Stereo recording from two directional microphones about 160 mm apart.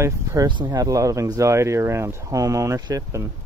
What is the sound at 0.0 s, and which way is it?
Speech, 20° right (ahead or behind).